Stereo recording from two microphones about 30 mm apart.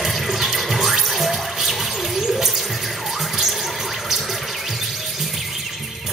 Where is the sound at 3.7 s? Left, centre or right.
Centre.